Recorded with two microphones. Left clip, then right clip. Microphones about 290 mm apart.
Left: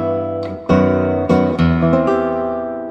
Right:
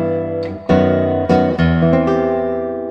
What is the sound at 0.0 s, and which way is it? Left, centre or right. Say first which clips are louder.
Music: even; right.